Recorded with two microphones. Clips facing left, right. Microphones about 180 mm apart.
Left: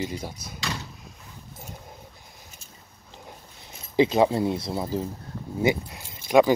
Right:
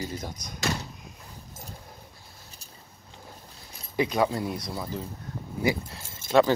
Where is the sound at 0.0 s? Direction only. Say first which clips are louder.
Left 3 dB; 10° left (ahead or behind).